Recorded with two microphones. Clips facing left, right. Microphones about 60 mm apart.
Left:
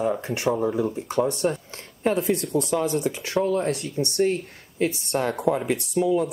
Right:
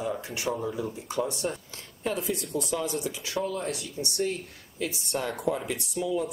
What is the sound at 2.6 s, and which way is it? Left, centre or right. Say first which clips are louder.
Speech: left 7 dB; left.